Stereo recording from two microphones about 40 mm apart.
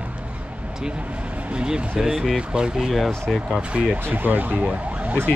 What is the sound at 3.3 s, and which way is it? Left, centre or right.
Speech, centre.